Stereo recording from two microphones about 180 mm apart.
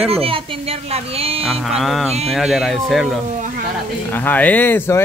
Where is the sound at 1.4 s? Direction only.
Centre (ahead or behind).